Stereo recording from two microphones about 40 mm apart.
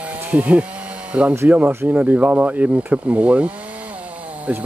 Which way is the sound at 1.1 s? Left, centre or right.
Right.